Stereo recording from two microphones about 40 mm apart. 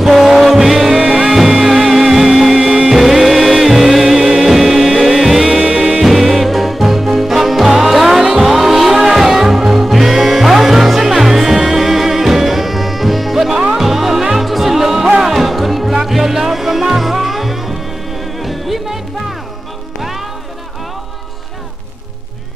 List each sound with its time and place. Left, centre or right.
0.0 s music: centre
0.9 s music: centre
1.3 s music: centre
2.5 s music: right
3.0 s music: centre
5.6 s music: right
6.0 s music: centre
20.0 s music: centre